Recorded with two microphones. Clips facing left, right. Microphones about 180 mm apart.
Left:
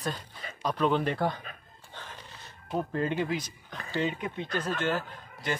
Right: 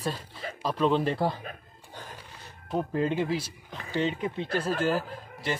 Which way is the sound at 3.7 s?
5° right (ahead or behind).